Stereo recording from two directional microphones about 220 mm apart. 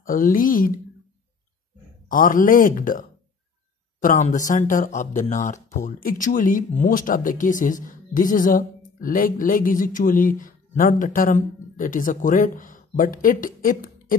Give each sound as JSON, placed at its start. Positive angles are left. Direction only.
{"t": 0.0, "sound": "speech", "side_deg": 40}
{"t": 2.0, "sound": "speech", "side_deg": 40}